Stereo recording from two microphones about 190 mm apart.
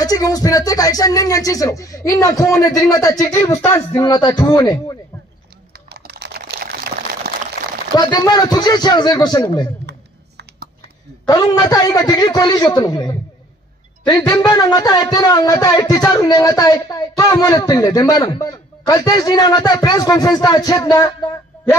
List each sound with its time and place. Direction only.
0.0 s a man's voice: 20° left (ahead or behind)
5.7 s typing: 55° right (ahead or behind)
7.2 s a sound: 55° right (ahead or behind)
7.9 s a man's voice: 20° left (ahead or behind)
9.8 s a sound: 60° right (ahead or behind)
11.2 s a man's voice: 20° left (ahead or behind)